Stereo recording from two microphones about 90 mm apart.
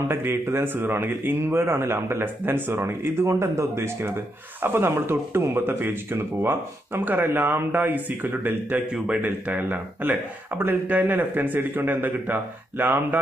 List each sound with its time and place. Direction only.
0.1 s speech: 25° right (ahead or behind)
8.9 s speech: 10° right (ahead or behind)